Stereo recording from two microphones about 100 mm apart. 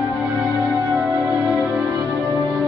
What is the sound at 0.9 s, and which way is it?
Music, 15° right (ahead or behind).